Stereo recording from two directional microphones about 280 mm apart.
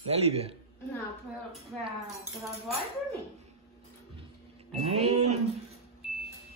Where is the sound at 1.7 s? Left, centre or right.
Centre.